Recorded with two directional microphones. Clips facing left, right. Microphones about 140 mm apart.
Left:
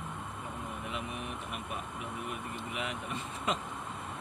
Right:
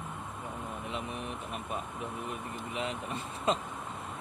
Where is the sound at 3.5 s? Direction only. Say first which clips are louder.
Right 4 dB; 35° right (ahead or behind).